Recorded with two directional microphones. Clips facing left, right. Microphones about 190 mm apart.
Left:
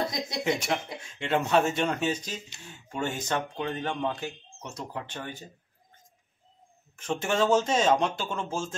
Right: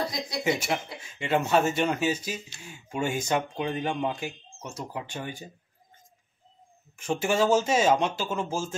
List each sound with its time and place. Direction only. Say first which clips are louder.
0.0 s speech: even; 20° left (ahead or behind)
0.4 s speech: right 1 dB; 5° right (ahead or behind)
7.0 s speech: right 2 dB; 10° right (ahead or behind)